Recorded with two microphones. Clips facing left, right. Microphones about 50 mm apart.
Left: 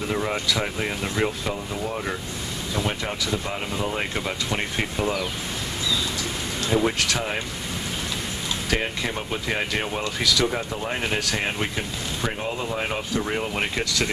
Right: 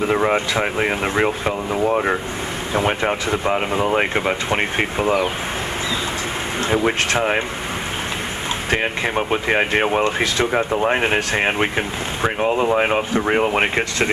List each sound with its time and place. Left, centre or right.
0.0 s speech: right
6.6 s speech: right
8.6 s speech: right